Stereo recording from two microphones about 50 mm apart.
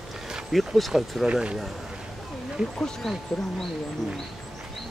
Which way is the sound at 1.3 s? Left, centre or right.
Right.